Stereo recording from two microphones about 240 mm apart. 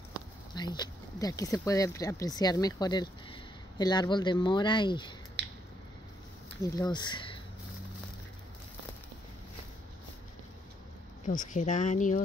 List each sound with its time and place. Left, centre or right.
0.1 s speech: centre
5.4 s a sound: right
6.6 s speech: centre
11.2 s speech: left